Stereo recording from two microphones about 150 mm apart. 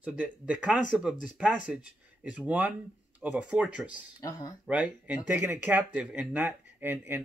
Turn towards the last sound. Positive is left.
turn(degrees=-15)  # may be behind; listen again after turning